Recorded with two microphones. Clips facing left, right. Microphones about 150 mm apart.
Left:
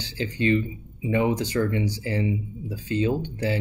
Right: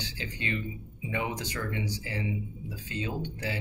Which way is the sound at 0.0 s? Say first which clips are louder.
Left 12 dB; 35° left (ahead or behind).